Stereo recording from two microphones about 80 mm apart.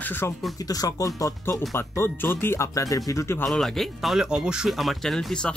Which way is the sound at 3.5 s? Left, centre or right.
Centre.